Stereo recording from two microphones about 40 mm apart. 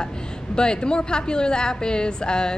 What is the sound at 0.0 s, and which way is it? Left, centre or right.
A woman's voice, centre.